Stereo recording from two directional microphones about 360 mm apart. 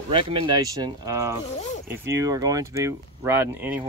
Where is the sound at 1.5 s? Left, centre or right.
Centre.